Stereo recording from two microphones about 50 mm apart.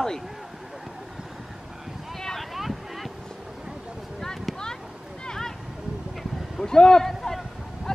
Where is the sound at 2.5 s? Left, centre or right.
Centre.